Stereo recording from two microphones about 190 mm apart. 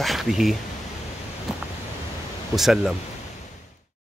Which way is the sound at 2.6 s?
Centre (ahead or behind).